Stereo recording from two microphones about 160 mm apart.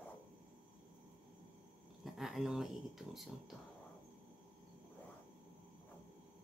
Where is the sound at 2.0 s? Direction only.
Centre (ahead or behind).